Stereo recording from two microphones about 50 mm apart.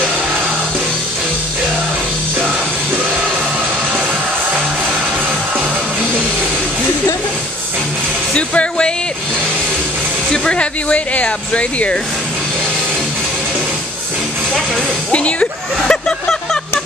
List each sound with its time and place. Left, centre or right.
8.4 s music: left
10.3 s speech: centre
15.9 s a sound: centre